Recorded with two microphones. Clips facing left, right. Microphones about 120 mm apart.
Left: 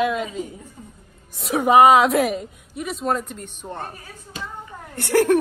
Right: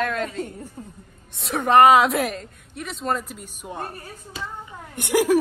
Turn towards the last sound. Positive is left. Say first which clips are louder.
# left 2 dB
turn(degrees=-15)  # may be behind; listen again after turning